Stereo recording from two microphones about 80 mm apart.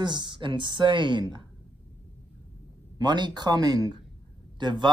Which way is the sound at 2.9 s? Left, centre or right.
Right.